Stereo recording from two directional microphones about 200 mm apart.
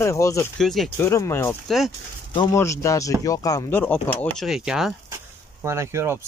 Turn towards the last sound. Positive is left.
turn(degrees=-15)  # may be behind; listen again after turning